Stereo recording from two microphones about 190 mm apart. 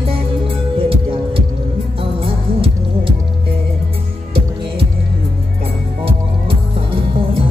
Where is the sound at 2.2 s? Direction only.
30° right (ahead or behind).